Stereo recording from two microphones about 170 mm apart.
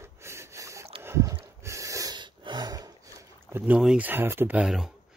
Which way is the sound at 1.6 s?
20° right (ahead or behind).